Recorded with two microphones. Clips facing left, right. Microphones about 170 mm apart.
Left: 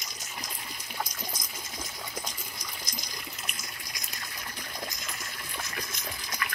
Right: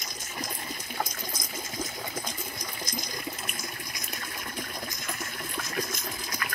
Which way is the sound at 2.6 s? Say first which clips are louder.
Right 6 dB; 50° right (ahead or behind).